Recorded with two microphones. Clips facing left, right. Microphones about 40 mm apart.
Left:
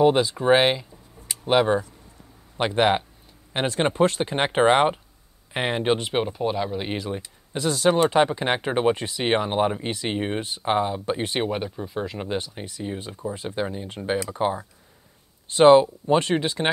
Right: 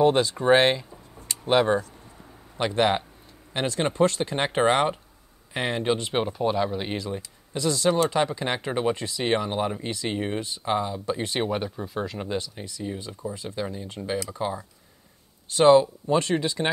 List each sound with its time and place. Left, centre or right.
0.0 s speech: centre
2.5 s speech: left
6.1 s speech: centre
7.2 s speech: left
11.4 s speech: centre
12.3 s speech: left